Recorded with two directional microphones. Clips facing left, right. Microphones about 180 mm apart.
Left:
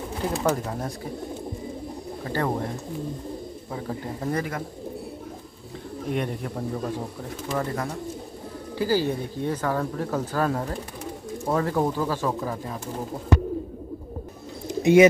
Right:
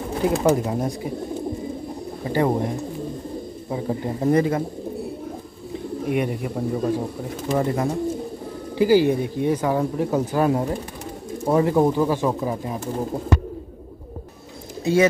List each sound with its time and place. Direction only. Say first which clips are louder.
0.4 s speech: right 6 dB; 15° right (ahead or behind)
2.2 s speech: right 6 dB; 15° right (ahead or behind)
3.7 s speech: right 7 dB; 20° right (ahead or behind)
6.0 s speech: right 4 dB; 10° right (ahead or behind)
7.4 s speech: right 6 dB; 20° right (ahead or behind)
14.8 s speech: left 3 dB; 20° left (ahead or behind)